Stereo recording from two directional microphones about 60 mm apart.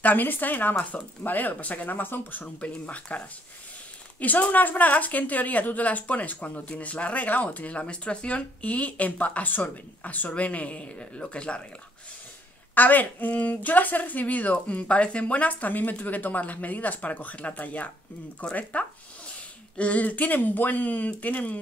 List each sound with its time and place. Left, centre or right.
0.0 s speech: left
2.4 s a woman's voice: left
12.7 s a woman's voice: left